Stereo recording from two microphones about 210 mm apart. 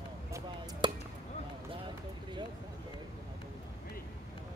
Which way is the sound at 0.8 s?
20° right (ahead or behind).